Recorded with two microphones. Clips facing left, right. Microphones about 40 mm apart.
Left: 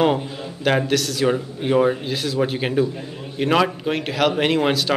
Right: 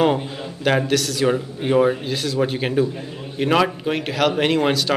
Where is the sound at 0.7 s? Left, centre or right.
Centre.